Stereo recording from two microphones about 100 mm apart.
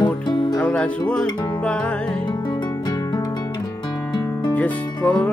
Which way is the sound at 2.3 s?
45° left (ahead or behind).